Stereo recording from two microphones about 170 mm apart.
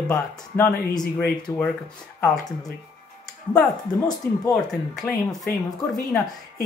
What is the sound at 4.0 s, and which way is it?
Speech, 20° left (ahead or behind).